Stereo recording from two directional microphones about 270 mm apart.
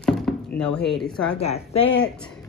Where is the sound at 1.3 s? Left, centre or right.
Left.